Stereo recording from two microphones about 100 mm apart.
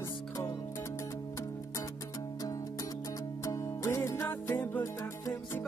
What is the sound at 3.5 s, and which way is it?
Music, 30° left (ahead or behind).